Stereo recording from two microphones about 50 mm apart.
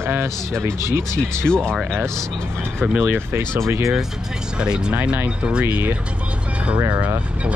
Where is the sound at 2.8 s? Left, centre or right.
Right.